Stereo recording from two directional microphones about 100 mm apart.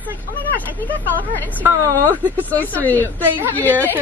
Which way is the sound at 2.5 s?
15° left (ahead or behind).